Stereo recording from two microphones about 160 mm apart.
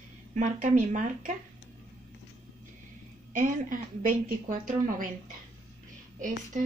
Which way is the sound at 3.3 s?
55° right (ahead or behind).